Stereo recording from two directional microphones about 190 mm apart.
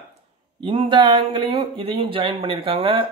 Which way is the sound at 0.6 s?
25° right (ahead or behind).